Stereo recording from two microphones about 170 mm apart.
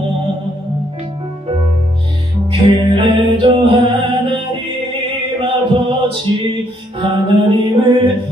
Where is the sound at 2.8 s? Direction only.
30° right (ahead or behind).